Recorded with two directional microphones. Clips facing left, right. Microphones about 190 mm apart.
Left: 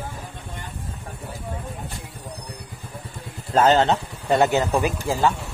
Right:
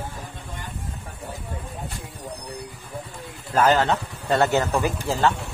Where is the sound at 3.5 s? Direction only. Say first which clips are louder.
Left 2 dB; 25° left (ahead or behind).